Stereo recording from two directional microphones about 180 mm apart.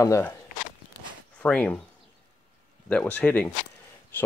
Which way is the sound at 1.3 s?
5° left (ahead or behind).